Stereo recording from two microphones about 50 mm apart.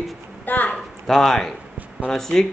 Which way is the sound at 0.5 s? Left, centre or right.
Left.